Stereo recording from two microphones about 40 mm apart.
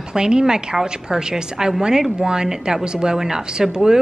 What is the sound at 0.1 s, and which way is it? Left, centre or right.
A woman's voice, centre.